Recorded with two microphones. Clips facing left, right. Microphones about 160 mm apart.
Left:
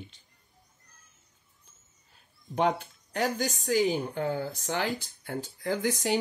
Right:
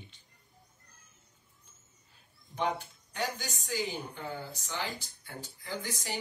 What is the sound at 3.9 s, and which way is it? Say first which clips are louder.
Speech: left 9 dB; 50° left (ahead or behind).